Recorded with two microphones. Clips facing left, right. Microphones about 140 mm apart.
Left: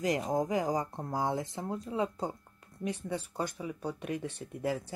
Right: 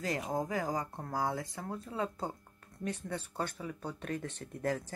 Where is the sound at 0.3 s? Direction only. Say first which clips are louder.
Left 4 dB; 20° left (ahead or behind).